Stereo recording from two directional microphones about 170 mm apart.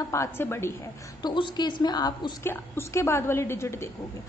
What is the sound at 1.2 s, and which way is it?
A woman's voice, 25° left (ahead or behind).